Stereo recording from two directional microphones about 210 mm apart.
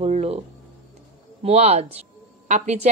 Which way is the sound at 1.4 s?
30° right (ahead or behind).